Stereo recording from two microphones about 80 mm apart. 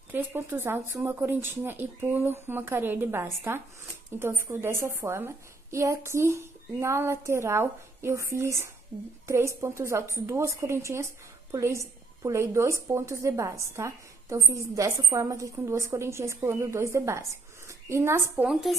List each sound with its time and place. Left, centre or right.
0.1 s a woman's voice: right
18.3 s speech: centre